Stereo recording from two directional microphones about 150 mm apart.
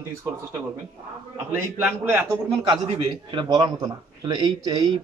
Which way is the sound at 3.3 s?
30° right (ahead or behind).